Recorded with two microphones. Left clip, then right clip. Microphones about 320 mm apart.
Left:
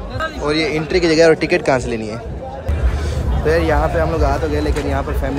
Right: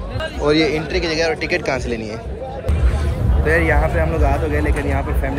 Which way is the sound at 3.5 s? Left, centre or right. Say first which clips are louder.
Left 1 dB; centre.